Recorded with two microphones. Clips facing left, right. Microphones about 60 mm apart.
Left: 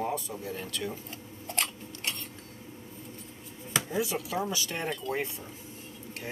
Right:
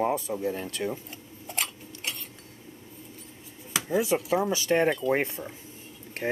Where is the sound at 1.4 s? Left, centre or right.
Centre.